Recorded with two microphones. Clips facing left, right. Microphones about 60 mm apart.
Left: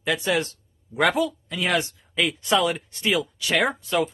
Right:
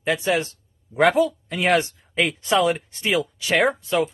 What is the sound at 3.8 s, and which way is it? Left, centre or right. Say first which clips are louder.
Speech: right 2 dB; centre.